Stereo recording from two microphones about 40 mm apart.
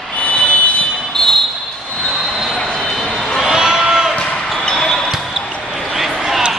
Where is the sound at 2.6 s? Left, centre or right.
Centre.